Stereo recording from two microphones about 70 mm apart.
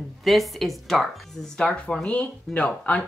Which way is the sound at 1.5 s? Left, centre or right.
Centre.